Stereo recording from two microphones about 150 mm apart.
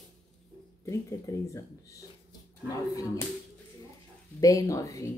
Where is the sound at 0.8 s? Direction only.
20° left (ahead or behind).